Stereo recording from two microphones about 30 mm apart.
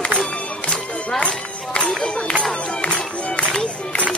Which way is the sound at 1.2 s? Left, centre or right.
Left.